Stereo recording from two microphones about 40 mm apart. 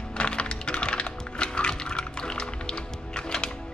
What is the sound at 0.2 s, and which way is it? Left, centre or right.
Typing, left.